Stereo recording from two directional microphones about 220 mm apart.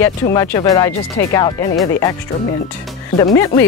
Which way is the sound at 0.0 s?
10° left (ahead or behind).